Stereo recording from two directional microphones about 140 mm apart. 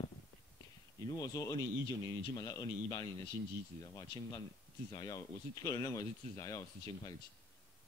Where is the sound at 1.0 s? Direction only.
25° left (ahead or behind).